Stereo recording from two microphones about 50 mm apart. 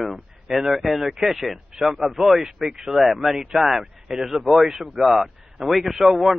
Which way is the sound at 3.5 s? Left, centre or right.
Centre.